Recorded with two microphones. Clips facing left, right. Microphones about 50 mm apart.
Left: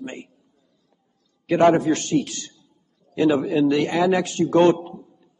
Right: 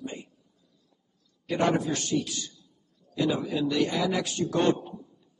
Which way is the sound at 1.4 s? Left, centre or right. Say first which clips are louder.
Left 9 dB; left.